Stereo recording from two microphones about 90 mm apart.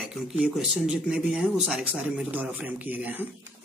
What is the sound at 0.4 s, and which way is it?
Speech, 10° right (ahead or behind).